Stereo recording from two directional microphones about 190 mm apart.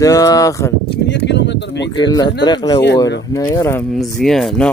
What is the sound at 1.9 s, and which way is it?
Speech, 20° left (ahead or behind).